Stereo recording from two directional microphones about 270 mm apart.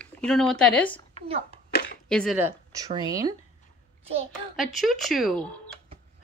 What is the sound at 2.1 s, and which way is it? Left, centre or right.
A woman's voice, centre.